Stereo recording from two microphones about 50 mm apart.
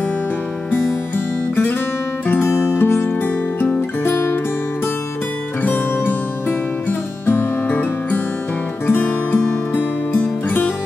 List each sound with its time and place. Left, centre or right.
0.7 s music: left
5.6 s music: left
6.9 s guitar: left
8.8 s music: left